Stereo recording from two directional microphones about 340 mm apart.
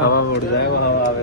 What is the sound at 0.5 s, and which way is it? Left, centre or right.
Speech, left.